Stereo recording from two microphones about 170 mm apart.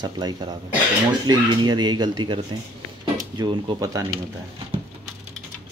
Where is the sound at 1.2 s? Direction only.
25° right (ahead or behind).